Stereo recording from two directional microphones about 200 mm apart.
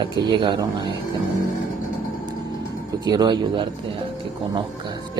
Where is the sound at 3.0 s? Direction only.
20° right (ahead or behind).